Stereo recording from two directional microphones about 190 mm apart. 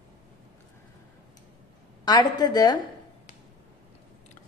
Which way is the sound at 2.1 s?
20° left (ahead or behind).